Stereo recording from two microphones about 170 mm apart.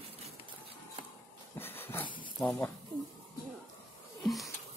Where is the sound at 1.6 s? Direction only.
10° left (ahead or behind).